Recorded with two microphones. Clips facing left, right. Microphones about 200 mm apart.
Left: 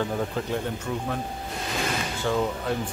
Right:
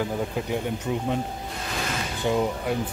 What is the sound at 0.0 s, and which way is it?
Speech, 10° right (ahead or behind).